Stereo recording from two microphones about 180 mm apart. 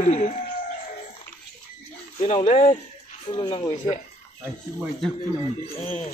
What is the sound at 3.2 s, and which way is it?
Speech, 25° left (ahead or behind).